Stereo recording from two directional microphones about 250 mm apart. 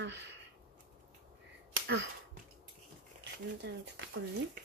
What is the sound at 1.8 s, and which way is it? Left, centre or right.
Speech, right.